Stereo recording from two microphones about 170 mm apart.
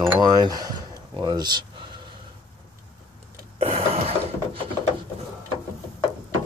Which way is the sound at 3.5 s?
35° right (ahead or behind).